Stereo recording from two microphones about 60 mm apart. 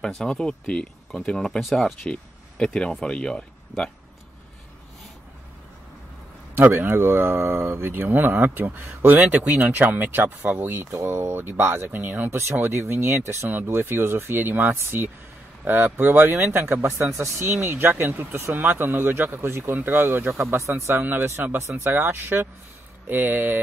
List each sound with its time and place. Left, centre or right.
0.0 s speech: centre
2.0 s speech: centre
6.6 s speech: right
20.4 s speech: right
20.8 s speech: right